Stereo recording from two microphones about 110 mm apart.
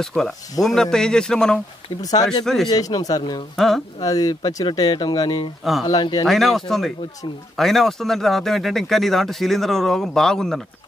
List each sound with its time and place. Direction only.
0.0 s a man's voice: 5° left (ahead or behind)
2.0 s speech: 35° left (ahead or behind)
2.4 s speech: 5° left (ahead or behind)
2.7 s speech: 35° left (ahead or behind)
3.5 s speech: centre (ahead or behind)
4.0 s speech: 35° left (ahead or behind)
5.6 s speech: centre (ahead or behind)
5.9 s speech: 40° left (ahead or behind)
6.2 s speech: centre (ahead or behind)